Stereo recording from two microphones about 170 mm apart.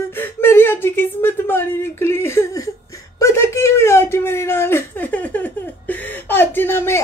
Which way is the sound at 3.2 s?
15° left (ahead or behind).